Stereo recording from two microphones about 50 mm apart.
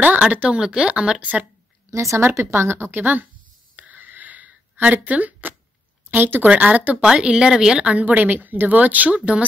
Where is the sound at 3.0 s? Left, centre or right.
Right.